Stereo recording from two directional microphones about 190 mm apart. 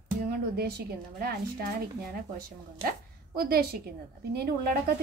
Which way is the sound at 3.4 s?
55° right (ahead or behind).